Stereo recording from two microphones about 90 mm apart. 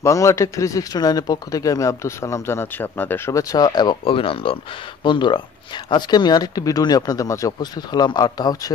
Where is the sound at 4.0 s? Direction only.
85° left.